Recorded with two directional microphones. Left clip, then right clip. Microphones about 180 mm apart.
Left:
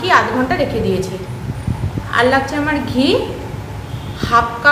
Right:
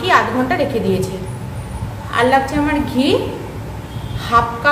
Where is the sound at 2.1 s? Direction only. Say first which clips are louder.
Even; centre (ahead or behind).